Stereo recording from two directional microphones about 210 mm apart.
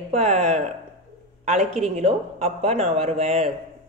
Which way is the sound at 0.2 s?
30° right (ahead or behind).